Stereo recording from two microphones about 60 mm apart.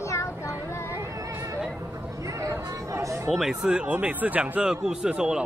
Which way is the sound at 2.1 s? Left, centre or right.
Right.